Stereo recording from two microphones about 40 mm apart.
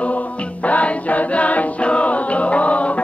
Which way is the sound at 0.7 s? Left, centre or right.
Left.